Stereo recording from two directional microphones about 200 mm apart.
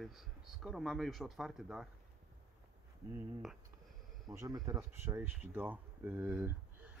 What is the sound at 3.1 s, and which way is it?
Speech, 5° right (ahead or behind).